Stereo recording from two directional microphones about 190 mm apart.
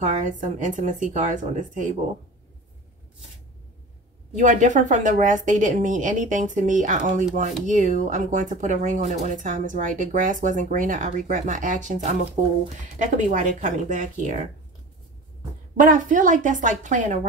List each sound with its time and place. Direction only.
0.2 s speech: 40° right (ahead or behind)
4.4 s a woman's voice: 40° right (ahead or behind)
15.7 s speech: 45° right (ahead or behind)